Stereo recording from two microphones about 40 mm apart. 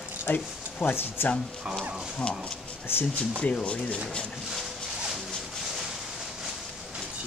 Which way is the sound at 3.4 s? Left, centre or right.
Left.